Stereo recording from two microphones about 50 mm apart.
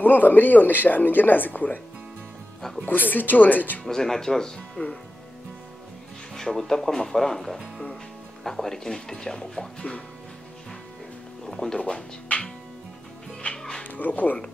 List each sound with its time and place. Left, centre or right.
0.0 s speech: left
2.8 s speech: left
3.8 s speech: centre
4.6 s speech: left
6.3 s speech: centre
11.4 s speech: centre
11.8 s speech: left
13.6 s music: centre
13.8 s speech: left